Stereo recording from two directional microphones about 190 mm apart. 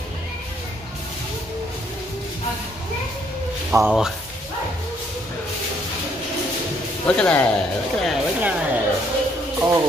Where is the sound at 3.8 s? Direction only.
Centre (ahead or behind).